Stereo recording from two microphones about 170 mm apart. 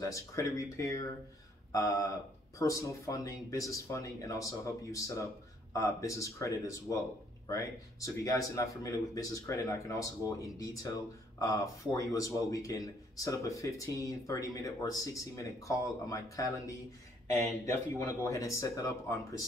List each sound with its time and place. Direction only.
0.0 s speech: 20° left (ahead or behind)